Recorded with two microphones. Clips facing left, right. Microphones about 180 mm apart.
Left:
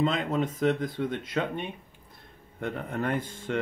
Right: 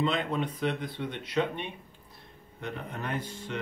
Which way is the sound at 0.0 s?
40° left (ahead or behind).